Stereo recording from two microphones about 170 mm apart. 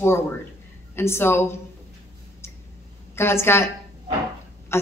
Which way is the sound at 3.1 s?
15° left (ahead or behind).